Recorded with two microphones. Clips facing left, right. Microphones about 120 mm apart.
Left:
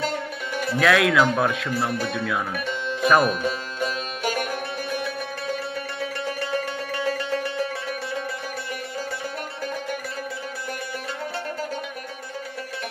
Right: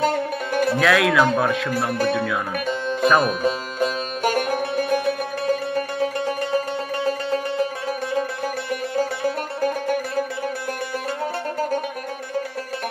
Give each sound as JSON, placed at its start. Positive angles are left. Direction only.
{"t": 0.0, "sound": "music", "side_deg": -50}
{"t": 0.7, "sound": "a man's voice", "side_deg": 0}
{"t": 2.6, "sound": "music", "side_deg": -45}
{"t": 3.1, "sound": "a man's voice", "side_deg": 0}
{"t": 3.4, "sound": "music", "side_deg": -45}
{"t": 9.6, "sound": "music", "side_deg": -50}